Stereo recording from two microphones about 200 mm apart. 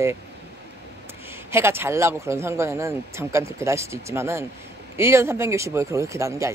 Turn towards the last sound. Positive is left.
turn(degrees=-15)  # may be behind; listen again after turning